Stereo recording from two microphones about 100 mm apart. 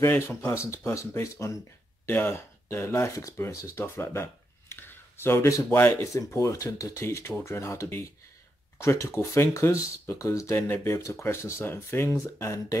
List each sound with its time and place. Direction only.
0.0 s speech: 20° left (ahead or behind)